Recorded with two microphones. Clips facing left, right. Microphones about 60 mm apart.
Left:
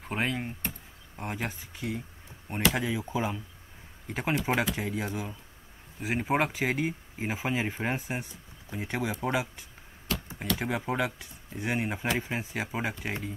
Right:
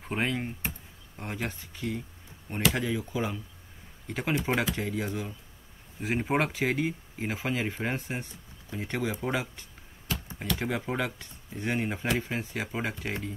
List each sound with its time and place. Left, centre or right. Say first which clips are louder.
0.0 s speech: right 1 dB; centre
3.0 s speech: left 1 dB; left; by 13.3 s centre